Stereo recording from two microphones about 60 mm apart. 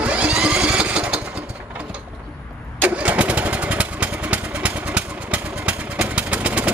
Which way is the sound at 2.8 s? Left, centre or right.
Right.